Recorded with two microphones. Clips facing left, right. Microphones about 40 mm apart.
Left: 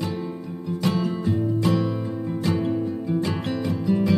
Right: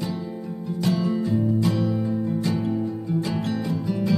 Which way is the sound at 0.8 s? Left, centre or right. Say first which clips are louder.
Right 1 dB; left.